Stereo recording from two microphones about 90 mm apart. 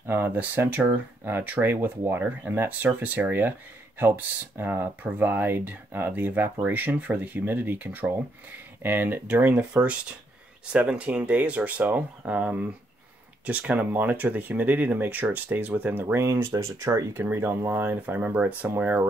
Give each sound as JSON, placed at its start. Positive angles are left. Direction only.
{"t": 0.0, "sound": "speech", "side_deg": -25}